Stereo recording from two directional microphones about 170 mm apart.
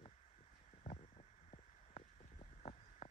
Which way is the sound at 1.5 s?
40° left (ahead or behind).